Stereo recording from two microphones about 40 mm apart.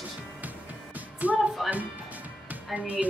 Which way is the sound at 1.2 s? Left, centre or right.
Right.